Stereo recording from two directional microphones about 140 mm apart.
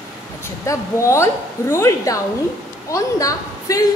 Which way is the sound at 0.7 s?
20° left (ahead or behind).